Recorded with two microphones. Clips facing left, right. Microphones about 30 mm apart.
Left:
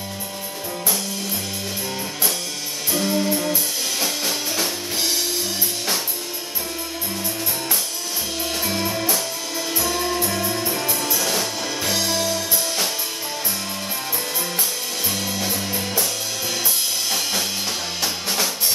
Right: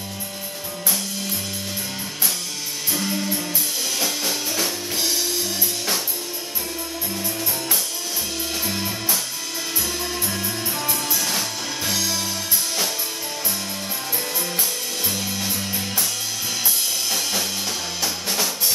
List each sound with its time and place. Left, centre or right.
2.9 s music: centre
8.6 s music: centre
9.8 s music: centre
10.2 s music: centre
11.9 s music: centre
15.0 s music: centre
17.1 s music: centre
18.0 s drum kit: centre